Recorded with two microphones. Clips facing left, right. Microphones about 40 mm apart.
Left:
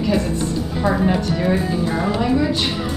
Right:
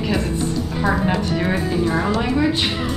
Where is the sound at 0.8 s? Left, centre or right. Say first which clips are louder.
Left 2 dB; centre.